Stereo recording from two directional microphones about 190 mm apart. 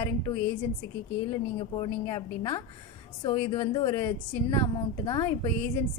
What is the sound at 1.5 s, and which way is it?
A woman's voice, 25° left (ahead or behind).